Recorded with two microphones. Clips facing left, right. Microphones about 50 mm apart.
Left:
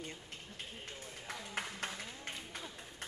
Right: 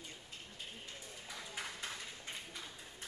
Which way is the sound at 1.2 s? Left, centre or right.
Left.